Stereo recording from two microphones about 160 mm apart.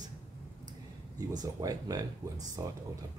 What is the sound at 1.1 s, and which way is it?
Speech, 25° right (ahead or behind).